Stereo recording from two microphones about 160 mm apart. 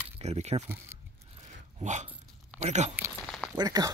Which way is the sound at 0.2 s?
45° right (ahead or behind).